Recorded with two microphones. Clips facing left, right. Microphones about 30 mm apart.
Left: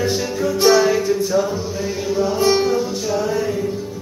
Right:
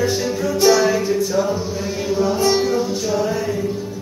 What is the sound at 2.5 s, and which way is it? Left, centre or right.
Music, centre.